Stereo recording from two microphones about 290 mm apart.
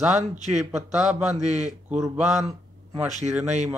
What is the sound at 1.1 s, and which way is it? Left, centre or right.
Speech, right.